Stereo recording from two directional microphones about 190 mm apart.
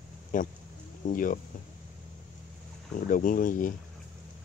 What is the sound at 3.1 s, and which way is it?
Speech, 45° left (ahead or behind).